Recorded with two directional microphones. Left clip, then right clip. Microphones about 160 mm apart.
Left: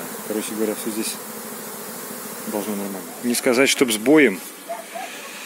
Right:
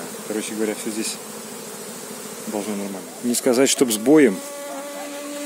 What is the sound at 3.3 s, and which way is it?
Speech, 25° right (ahead or behind).